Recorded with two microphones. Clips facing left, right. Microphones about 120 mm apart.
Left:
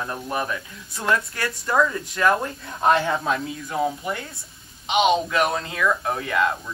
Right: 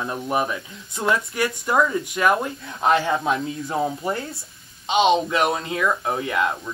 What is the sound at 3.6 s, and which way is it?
Speech, 30° right (ahead or behind).